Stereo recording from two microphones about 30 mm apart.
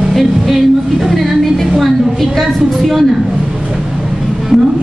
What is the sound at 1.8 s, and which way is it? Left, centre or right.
Speech, centre.